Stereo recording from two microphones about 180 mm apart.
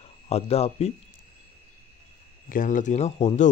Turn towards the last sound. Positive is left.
turn(degrees=40)  # may be behind; listen again after turning